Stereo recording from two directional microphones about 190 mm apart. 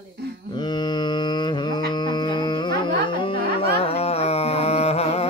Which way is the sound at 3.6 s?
30° left (ahead or behind).